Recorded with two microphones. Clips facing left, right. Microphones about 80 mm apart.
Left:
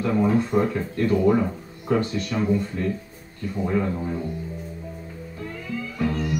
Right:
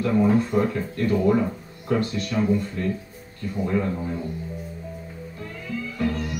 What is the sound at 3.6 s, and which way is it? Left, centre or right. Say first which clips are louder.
Speech: left 1 dB; centre.